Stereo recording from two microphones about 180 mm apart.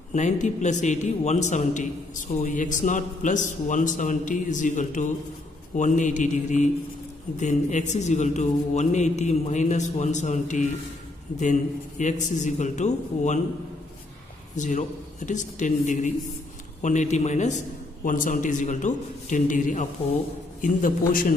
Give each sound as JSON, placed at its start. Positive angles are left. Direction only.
{"t": 0.1, "sound": "a man's voice", "side_deg": 40}
{"t": 12.0, "sound": "a man's voice", "side_deg": 40}
{"t": 14.5, "sound": "a man's voice", "side_deg": 40}